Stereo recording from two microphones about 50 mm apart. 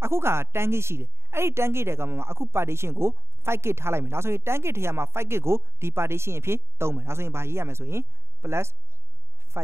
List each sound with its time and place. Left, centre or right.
0.0 s a woman's voice: right